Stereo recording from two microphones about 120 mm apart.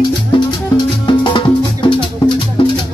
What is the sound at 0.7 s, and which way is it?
Music, 40° left (ahead or behind).